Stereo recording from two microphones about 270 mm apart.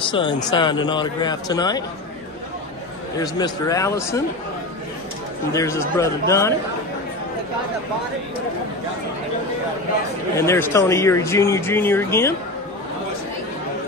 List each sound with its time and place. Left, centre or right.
0.1 s speech: centre
3.2 s speech: centre
5.5 s speech: centre
10.3 s speech: centre